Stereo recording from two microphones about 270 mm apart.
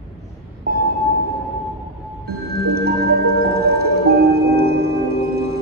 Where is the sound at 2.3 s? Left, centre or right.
Right.